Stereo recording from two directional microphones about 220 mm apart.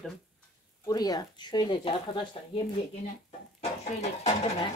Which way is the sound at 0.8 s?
15° left (ahead or behind).